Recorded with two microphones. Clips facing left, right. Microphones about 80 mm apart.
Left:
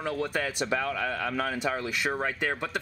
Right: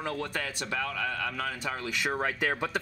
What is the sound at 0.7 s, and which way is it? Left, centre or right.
Speech, centre.